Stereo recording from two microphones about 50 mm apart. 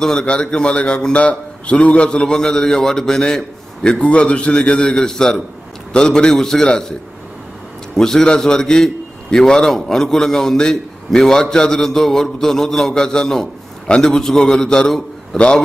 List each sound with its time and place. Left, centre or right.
0.0 s a man's voice: centre